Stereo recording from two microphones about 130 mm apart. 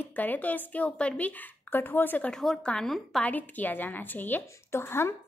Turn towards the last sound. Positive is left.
turn(degrees=20)  # may be behind; listen again after turning